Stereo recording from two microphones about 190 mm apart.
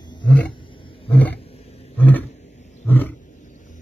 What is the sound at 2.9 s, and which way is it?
Roaring cats, 10° left (ahead or behind).